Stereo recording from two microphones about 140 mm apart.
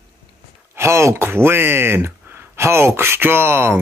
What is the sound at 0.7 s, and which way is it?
Speech, 20° right (ahead or behind).